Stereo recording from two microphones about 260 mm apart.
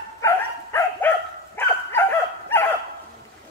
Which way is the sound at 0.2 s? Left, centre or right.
Centre.